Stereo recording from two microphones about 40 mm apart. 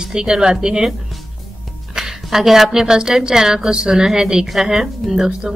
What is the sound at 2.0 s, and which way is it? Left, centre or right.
A woman's voice, centre.